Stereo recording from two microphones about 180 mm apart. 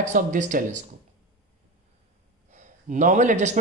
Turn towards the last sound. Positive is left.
turn(degrees=-40)  # may be behind; listen again after turning